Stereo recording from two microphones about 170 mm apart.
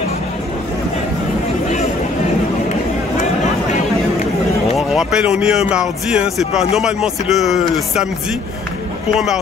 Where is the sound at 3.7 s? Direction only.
45° left (ahead or behind).